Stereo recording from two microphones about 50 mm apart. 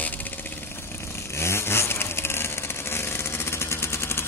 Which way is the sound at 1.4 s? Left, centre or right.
Left.